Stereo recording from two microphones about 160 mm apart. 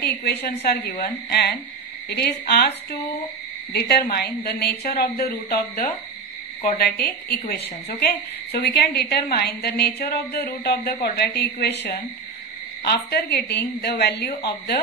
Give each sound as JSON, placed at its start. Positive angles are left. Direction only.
{"t": 0.0, "sound": "a woman's voice", "side_deg": 90}
{"t": 0.8, "sound": "a woman's voice", "side_deg": 75}
{"t": 2.0, "sound": "a woman's voice", "side_deg": 90}
{"t": 3.7, "sound": "a woman's voice", "side_deg": 80}
{"t": 6.8, "sound": "a woman's voice", "side_deg": 75}